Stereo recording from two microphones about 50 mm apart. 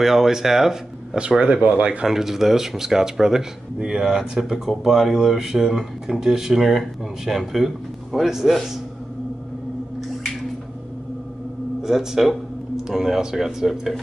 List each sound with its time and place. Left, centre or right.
0.0 s speech: centre
1.4 s speech: right
2.0 s speech: centre
11.8 s speech: centre